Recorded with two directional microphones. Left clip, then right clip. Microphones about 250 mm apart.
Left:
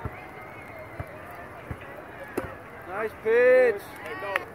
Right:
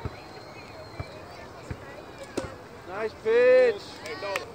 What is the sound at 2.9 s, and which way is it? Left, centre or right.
Speech, left.